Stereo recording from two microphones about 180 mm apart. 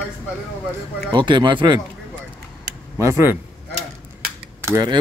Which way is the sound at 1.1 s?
25° right (ahead or behind).